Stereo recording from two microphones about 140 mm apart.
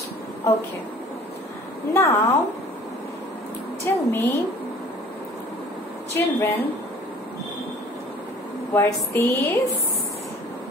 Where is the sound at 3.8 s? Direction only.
15° left (ahead or behind).